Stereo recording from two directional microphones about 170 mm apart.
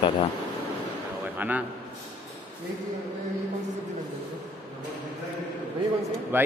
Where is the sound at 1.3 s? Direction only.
10° right (ahead or behind).